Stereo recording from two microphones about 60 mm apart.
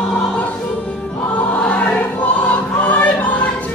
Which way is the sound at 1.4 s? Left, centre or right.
Left.